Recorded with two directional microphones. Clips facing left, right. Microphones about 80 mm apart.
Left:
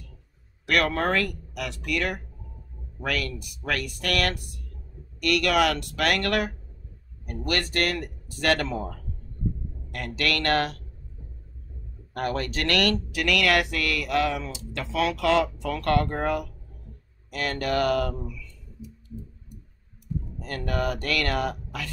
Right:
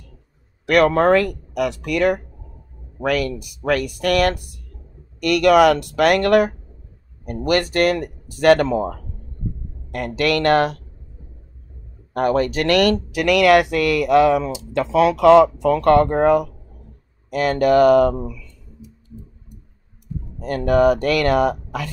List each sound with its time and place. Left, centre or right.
0.7 s speech: centre
12.1 s speech: centre
18.1 s speech: right
20.3 s speech: centre